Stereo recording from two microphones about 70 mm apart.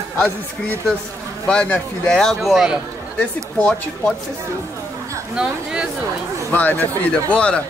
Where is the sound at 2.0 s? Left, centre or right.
Centre.